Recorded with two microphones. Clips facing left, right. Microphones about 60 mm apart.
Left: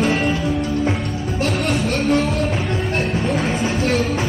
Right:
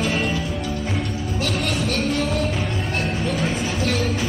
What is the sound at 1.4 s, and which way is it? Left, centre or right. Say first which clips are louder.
Music: left 4 dB; left.